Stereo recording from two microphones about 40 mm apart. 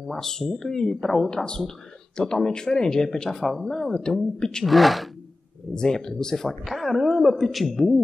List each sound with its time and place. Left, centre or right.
0.0 s speech: centre
4.6 s speech: centre
5.8 s speech: centre
6.6 s speech: centre